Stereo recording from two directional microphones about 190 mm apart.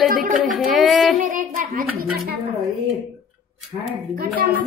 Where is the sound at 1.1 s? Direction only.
45° right (ahead or behind).